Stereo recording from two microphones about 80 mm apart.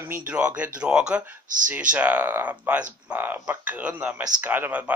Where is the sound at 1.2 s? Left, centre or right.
Right.